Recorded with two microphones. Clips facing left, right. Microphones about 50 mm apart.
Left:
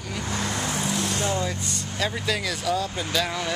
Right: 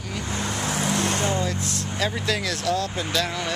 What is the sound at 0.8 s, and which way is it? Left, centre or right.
Vehicle, right.